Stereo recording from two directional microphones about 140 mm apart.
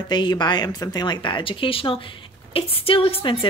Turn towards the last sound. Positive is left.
turn(degrees=40)  # may be behind; listen again after turning